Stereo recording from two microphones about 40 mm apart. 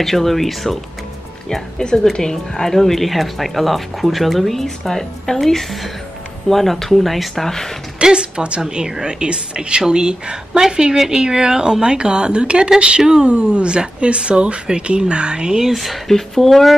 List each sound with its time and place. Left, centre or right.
0.0 s speech: centre
1.5 s speech: centre
8.0 s speech: right
15.7 s speech: centre